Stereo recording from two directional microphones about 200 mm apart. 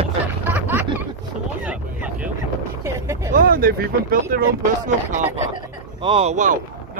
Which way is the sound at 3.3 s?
45° right (ahead or behind).